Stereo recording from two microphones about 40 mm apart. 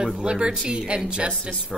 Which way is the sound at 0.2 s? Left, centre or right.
Right.